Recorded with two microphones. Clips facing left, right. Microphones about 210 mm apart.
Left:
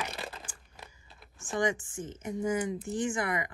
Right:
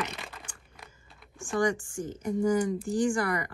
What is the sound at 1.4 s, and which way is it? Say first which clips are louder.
Speech: right 3 dB; 20° left (ahead or behind).